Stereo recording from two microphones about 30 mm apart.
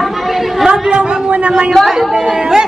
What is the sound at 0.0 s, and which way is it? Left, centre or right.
Chatter, centre.